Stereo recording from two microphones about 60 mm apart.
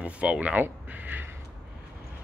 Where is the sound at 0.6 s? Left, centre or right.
Right.